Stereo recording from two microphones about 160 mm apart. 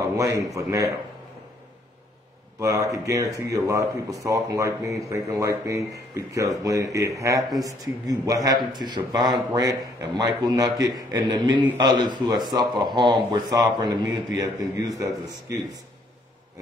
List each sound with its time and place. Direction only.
0.4 s a man's voice: 20° right (ahead or behind)
2.6 s a man's voice: 20° right (ahead or behind)